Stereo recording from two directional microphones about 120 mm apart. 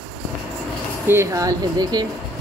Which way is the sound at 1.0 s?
20° right (ahead or behind).